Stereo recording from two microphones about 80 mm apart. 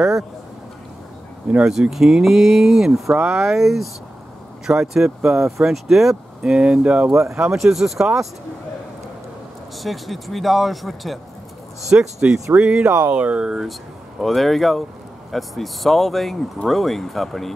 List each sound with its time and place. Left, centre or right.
1.5 s speech: centre
7.1 s speech: right
7.5 s speech: centre
9.8 s speech: centre